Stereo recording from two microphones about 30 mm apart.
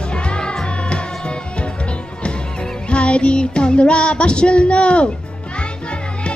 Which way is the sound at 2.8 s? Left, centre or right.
Left.